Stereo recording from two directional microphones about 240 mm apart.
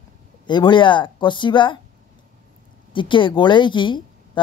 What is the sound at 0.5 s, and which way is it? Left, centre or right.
A woman's voice, centre.